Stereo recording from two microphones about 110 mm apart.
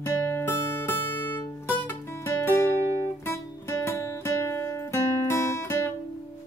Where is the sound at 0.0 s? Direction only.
20° left (ahead or behind).